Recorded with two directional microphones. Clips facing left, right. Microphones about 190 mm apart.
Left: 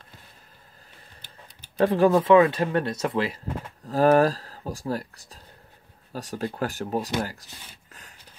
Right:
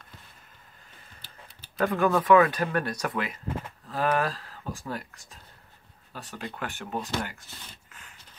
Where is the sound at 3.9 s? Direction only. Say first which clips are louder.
Left 8 dB; 40° left (ahead or behind).